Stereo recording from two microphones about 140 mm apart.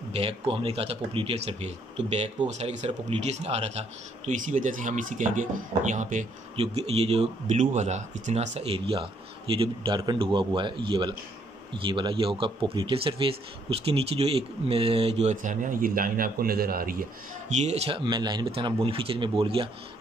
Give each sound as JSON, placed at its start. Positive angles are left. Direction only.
{"t": 0.1, "sound": "a man's voice", "side_deg": -45}
{"t": 4.3, "sound": "speech", "side_deg": -65}
{"t": 6.5, "sound": "a man's voice", "side_deg": -45}
{"t": 17.6, "sound": "speech", "side_deg": -45}